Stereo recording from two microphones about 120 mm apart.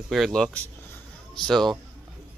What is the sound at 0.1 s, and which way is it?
Speech, centre (ahead or behind).